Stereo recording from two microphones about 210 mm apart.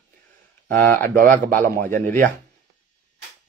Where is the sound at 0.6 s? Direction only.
10° left (ahead or behind).